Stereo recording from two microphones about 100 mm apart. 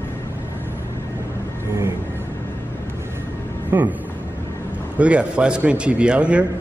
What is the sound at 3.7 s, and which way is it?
Speech, 15° right (ahead or behind).